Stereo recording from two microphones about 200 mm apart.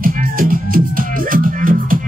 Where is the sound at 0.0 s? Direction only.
45° right (ahead or behind).